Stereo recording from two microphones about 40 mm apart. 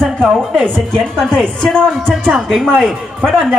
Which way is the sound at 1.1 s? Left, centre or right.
Centre.